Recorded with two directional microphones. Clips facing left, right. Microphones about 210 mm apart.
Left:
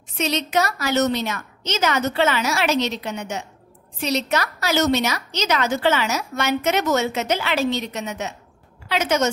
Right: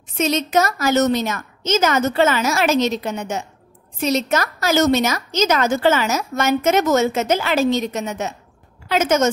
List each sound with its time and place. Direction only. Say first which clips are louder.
0.2 s a woman's voice: right 4 dB; 45° right (ahead or behind)